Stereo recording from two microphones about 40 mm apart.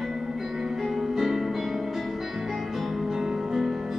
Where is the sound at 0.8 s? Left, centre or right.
Centre.